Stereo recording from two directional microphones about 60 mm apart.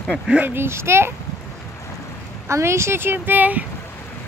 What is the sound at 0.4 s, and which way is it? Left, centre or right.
Speech, right.